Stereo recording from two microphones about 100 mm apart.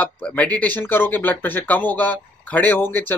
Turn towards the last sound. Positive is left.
turn(degrees=20)  # may be behind; listen again after turning